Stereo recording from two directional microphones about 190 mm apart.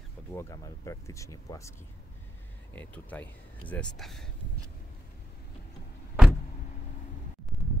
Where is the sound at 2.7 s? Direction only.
10° left (ahead or behind).